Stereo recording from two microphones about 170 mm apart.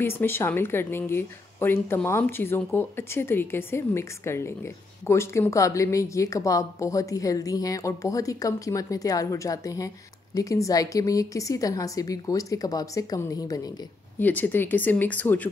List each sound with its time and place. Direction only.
0.0 s a woman's voice: 15° left (ahead or behind)
14.2 s speech: 10° left (ahead or behind)